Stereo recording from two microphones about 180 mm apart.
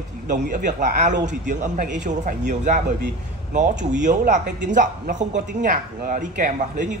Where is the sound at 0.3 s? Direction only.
45° right (ahead or behind).